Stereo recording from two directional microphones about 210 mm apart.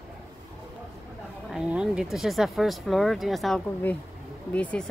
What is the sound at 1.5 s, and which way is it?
Speech, 5° right (ahead or behind).